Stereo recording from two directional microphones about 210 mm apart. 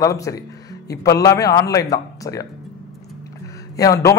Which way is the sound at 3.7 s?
15° left (ahead or behind).